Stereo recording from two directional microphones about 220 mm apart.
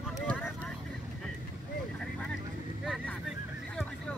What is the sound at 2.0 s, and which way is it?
Vehicle, 5° left (ahead or behind).